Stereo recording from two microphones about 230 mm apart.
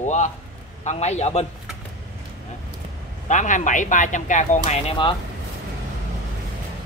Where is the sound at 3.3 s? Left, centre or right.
Left.